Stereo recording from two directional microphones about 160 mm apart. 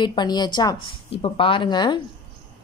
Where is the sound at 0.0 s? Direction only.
25° left (ahead or behind).